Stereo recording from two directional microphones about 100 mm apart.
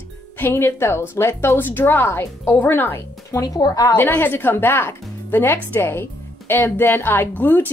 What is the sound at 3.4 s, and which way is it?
Speech, 40° left (ahead or behind).